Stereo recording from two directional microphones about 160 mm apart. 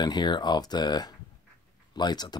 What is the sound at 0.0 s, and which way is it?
Speech, 30° left (ahead or behind).